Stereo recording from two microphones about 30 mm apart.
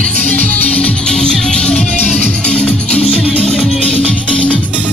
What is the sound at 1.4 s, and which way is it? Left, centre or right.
Music, left.